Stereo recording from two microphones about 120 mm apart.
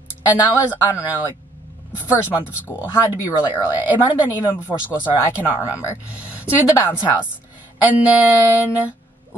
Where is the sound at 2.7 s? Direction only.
25° left (ahead or behind).